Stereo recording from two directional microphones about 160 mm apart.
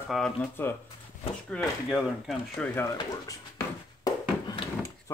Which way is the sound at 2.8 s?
20° left (ahead or behind).